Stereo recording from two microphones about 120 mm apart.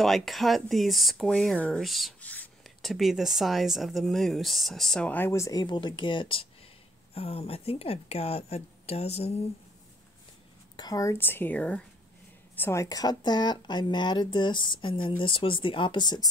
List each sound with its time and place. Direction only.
0.0 s speech: centre (ahead or behind)
2.2 s a sound: 15° left (ahead or behind)
2.6 s speech: centre (ahead or behind)
5.1 s speech: 20° left (ahead or behind); by 6.4 s 45° left (ahead or behind)
7.2 s speech: 55° left (ahead or behind)
10.8 s speech: 30° left (ahead or behind); by 11.8 s 10° left (ahead or behind)
12.5 s speech: 20° left (ahead or behind)